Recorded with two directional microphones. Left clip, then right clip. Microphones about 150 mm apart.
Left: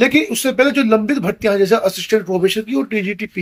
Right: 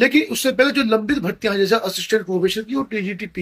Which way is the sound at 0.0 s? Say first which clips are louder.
Left 2 dB; 50° left (ahead or behind).